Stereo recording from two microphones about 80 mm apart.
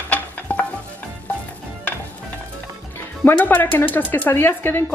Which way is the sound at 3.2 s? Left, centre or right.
Left.